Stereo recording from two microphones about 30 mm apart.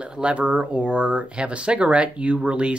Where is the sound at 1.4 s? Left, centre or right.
Right.